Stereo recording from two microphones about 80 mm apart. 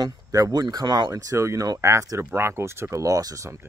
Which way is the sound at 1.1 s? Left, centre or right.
Right.